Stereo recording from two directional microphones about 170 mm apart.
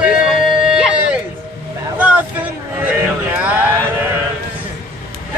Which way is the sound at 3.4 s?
10° right (ahead or behind).